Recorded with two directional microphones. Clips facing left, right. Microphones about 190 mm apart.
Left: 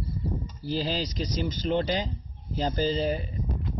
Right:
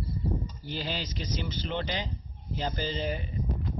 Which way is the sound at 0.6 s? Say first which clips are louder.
Left 9 dB; 35° left (ahead or behind).